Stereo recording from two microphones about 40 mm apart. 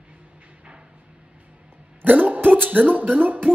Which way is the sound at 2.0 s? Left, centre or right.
Right.